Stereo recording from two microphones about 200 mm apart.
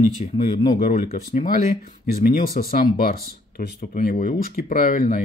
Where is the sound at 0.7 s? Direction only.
40° left (ahead or behind).